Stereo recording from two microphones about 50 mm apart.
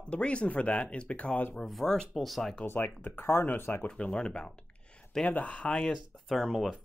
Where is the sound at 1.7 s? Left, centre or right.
Centre.